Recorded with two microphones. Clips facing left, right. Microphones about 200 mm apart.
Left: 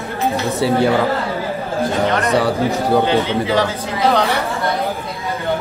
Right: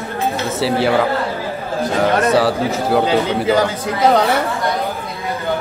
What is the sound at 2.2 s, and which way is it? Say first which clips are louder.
A man's voice: right 1 dB; centre (ahead or behind).